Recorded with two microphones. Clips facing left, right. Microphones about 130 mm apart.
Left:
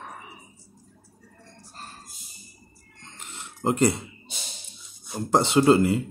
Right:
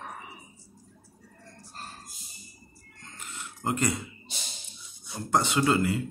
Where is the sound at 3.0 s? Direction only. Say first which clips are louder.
Even; 25° left (ahead or behind).